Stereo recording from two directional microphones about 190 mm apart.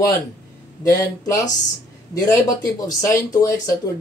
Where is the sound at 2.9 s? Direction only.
15° left (ahead or behind).